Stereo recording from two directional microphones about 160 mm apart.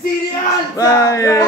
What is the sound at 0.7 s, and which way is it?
Speech, 20° left (ahead or behind).